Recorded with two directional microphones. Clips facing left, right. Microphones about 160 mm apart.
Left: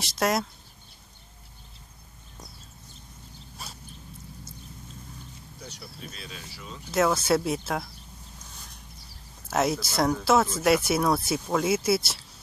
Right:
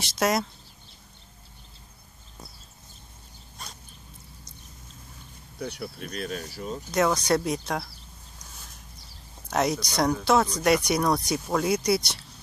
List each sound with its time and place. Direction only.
0.0 s speech: centre (ahead or behind)
3.6 s dog: 5° left (ahead or behind)
5.6 s speech: 60° right (ahead or behind)
6.1 s speech: 50° right (ahead or behind)
6.9 s speech: centre (ahead or behind)
9.5 s speech: centre (ahead or behind)